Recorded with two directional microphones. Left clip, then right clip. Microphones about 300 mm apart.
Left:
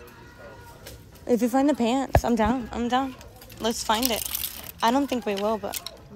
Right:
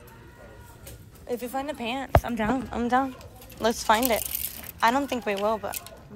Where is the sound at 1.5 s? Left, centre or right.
Left; by 4.5 s centre.